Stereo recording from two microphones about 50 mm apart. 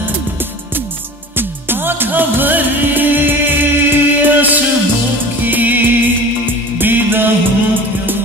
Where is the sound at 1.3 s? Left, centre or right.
Right.